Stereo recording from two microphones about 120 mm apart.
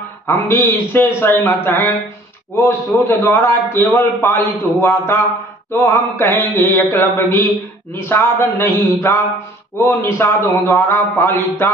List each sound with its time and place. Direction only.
0.3 s a man's voice: 20° left (ahead or behind)